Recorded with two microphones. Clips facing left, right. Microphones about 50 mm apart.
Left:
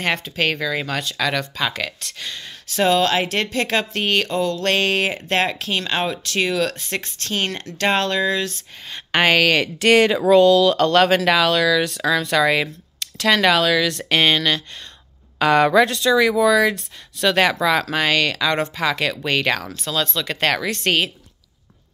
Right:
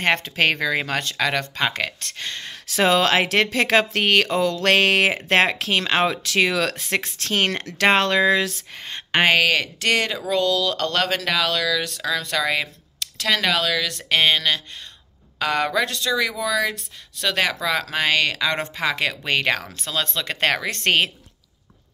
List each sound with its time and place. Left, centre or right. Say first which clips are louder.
0.2 s speech: right 1 dB; right
1.1 s speech: left 1 dB; right
2.2 s speech: right 1 dB; right
2.7 s speech: even; right
9.1 s speech: left 1 dB; centre
9.6 s speech: left 7 dB; centre
15.3 s speech: left 7 dB; centre
17.9 s speech: left 2 dB; centre
20.7 s speech: even; right